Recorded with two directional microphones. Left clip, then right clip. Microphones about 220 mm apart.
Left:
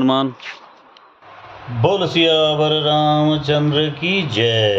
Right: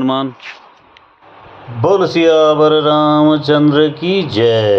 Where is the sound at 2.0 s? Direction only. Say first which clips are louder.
Right 5 dB; 10° right (ahead or behind).